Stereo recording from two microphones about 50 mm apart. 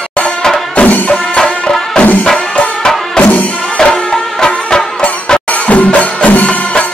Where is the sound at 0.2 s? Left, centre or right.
Centre.